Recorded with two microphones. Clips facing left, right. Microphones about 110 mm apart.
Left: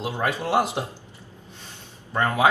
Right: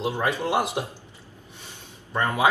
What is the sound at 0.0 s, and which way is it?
Speech, 15° left (ahead or behind).